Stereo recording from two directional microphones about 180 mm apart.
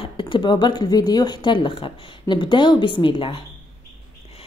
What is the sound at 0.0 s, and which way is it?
Speech, 25° left (ahead or behind).